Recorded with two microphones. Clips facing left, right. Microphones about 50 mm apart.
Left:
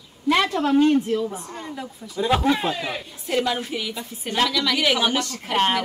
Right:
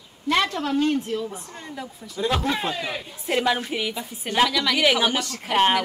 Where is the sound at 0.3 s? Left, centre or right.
Centre.